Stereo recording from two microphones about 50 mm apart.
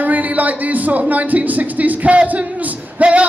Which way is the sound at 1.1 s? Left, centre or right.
Right.